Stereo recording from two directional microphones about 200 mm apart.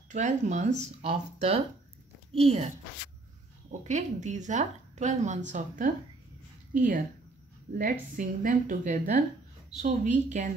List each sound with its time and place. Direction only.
0.1 s speech: 35° right (ahead or behind)
3.8 s a woman's voice: 35° right (ahead or behind)
8.2 s speech: 40° right (ahead or behind)